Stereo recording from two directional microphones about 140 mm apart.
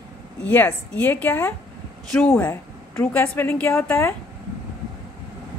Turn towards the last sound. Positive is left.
turn(degrees=15)  # may be behind; listen again after turning